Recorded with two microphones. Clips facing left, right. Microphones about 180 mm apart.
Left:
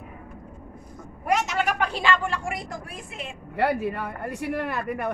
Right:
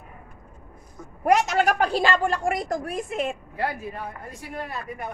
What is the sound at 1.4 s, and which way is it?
A woman's voice, 40° right (ahead or behind).